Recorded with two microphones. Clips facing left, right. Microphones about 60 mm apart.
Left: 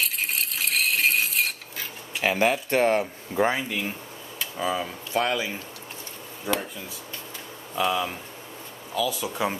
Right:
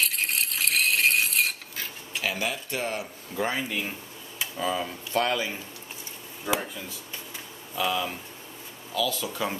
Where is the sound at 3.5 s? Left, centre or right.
Centre.